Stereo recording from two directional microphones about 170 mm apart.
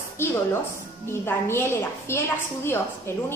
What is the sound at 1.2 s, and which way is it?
A woman's voice, 15° left (ahead or behind).